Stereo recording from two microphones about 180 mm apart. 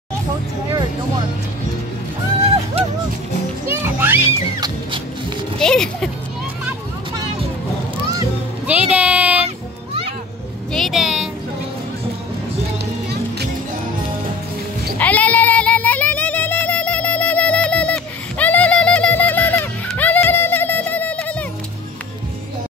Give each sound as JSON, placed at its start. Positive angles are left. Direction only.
{"t": 2.8, "sound": "music", "side_deg": -35}
{"t": 3.6, "sound": "music", "side_deg": -15}
{"t": 4.6, "sound": "music", "side_deg": -25}
{"t": 5.6, "sound": "speech", "side_deg": 5}
{"t": 8.6, "sound": "music", "side_deg": -5}
{"t": 10.7, "sound": "a sound", "side_deg": 0}
{"t": 15.0, "sound": "a sound", "side_deg": 10}